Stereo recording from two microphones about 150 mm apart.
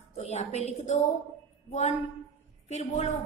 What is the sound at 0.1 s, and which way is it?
A woman's voice, 45° left (ahead or behind).